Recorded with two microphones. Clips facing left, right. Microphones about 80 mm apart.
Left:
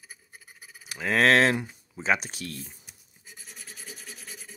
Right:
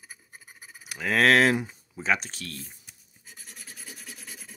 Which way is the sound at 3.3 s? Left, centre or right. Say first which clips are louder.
Even; centre.